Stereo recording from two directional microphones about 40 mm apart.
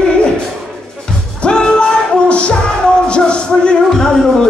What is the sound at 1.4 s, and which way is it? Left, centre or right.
Music, centre.